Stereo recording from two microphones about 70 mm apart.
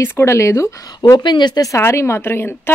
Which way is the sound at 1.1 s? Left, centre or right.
Left.